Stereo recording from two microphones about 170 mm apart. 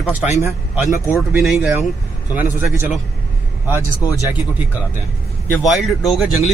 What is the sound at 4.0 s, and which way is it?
Speech, 20° left (ahead or behind).